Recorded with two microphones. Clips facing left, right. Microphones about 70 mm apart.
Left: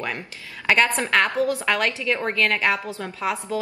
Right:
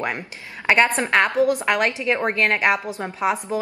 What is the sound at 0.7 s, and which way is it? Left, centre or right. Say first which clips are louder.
A woman's voice: right 2 dB; right.